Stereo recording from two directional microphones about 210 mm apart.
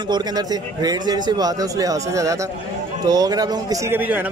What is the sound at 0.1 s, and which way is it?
A man's voice, 20° right (ahead or behind).